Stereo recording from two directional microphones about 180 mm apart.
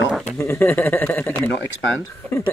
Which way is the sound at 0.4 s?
10° left (ahead or behind).